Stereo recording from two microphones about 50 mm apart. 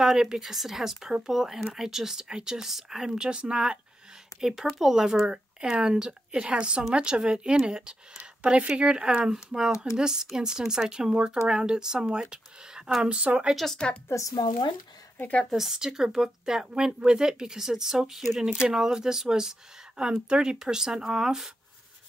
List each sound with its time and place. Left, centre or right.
0.0 s speech: centre
4.4 s speech: centre
8.2 s speech: right
15.1 s a woman's voice: left
15.5 s speech: centre
18.4 s speech: centre